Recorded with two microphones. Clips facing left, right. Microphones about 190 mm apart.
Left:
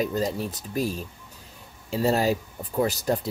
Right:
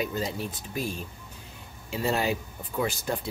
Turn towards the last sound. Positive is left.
turn(degrees=40)  # may be behind; listen again after turning